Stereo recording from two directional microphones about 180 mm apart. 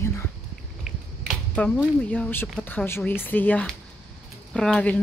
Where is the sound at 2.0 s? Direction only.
10° left (ahead or behind).